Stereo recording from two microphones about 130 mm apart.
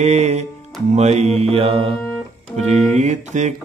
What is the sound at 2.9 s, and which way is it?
Mantra, 65° right (ahead or behind).